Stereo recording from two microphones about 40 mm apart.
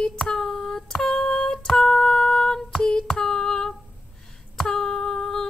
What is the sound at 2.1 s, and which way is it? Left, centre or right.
Female singing, centre.